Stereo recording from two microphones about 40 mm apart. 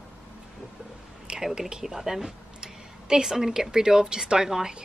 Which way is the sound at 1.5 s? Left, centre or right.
Centre.